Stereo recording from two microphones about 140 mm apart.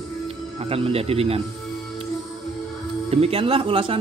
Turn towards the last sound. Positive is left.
turn(degrees=-40)  # may be behind; listen again after turning